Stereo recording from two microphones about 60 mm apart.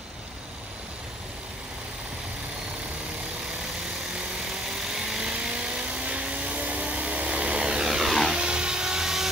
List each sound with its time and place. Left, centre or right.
5.0 s vehicle: centre
8.3 s wood: centre